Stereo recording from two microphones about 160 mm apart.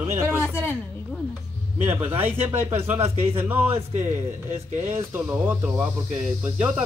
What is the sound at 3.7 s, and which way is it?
Speech, 45° right (ahead or behind).